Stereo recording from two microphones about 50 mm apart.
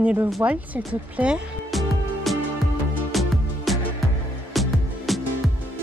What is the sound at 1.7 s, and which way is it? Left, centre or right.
Music, centre.